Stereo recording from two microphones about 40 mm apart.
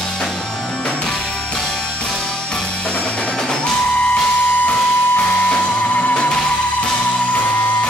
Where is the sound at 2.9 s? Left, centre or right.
Left.